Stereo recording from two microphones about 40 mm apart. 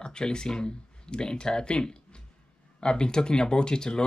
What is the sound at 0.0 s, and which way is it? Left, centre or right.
Speech, left.